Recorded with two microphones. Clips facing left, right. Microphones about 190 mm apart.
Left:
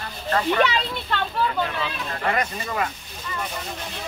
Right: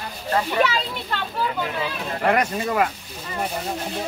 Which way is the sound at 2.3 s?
60° right (ahead or behind).